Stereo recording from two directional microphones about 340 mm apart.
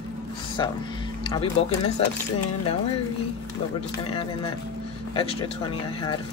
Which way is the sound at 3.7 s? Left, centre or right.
Centre.